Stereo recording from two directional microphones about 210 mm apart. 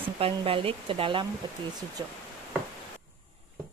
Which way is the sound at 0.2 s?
25° right (ahead or behind).